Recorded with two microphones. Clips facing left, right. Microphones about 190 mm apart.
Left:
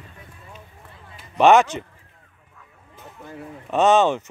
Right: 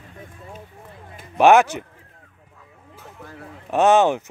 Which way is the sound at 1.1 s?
50° right (ahead or behind).